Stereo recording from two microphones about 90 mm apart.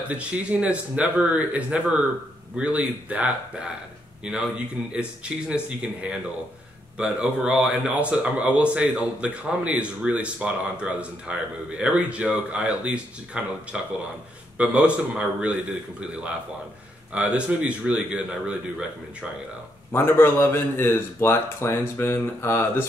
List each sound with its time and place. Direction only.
0.1 s speech: 15° right (ahead or behind)
19.9 s a man's voice: 25° left (ahead or behind)